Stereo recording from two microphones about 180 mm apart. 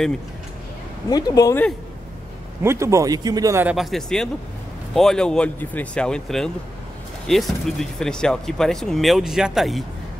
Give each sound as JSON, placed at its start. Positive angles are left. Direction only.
{"t": 1.1, "sound": "speech", "side_deg": 20}
{"t": 2.6, "sound": "speech", "side_deg": -15}
{"t": 3.6, "sound": "speech", "side_deg": 0}